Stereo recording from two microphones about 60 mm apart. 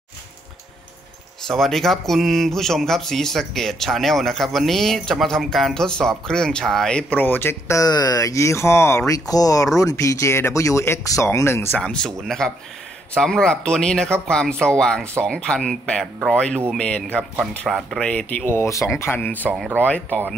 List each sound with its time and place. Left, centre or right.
1.5 s speech: centre
7.2 s speech: left
7.6 s speech: left
11.8 s speech: centre
17.6 s speech: centre
17.9 s speech: centre
18.4 s speech: left
19.1 s speech: left